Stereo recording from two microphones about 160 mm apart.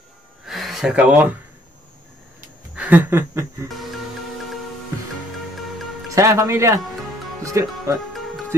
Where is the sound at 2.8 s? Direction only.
10° right (ahead or behind).